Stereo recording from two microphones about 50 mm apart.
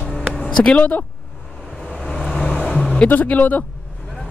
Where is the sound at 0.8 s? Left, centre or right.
Left.